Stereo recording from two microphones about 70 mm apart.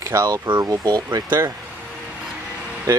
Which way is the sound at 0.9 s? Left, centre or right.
Right.